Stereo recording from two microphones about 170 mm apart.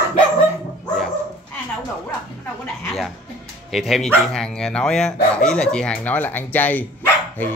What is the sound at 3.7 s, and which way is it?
A man's voice, centre (ahead or behind).